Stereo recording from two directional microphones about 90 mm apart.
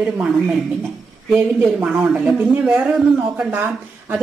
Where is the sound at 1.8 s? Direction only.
10° right (ahead or behind).